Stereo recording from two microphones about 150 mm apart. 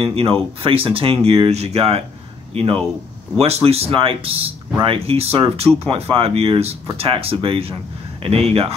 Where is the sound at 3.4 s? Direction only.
45° right (ahead or behind).